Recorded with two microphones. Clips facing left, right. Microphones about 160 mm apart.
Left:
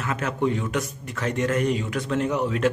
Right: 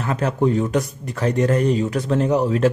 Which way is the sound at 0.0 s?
35° right (ahead or behind).